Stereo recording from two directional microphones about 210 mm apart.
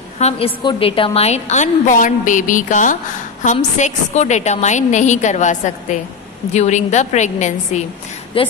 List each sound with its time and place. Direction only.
0.2 s a woman's voice: 25° left (ahead or behind)